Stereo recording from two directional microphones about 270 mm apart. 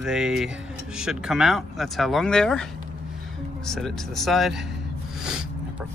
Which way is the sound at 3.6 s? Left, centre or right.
Centre.